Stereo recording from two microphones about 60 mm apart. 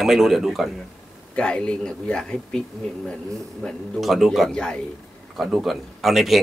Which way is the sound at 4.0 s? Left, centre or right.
Centre.